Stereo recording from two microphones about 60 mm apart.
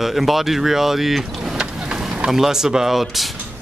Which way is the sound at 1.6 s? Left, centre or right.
Centre.